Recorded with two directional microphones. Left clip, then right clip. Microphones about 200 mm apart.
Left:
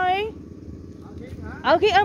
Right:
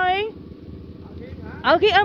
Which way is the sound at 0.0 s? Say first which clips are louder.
Right 1 dB; centre (ahead or behind).